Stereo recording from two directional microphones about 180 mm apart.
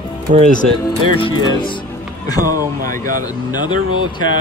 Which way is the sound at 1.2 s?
25° left (ahead or behind).